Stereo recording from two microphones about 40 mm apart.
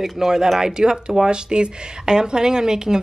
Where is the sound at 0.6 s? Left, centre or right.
Centre.